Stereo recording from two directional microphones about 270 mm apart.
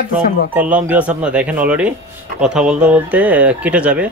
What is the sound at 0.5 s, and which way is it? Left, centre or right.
Speech, centre.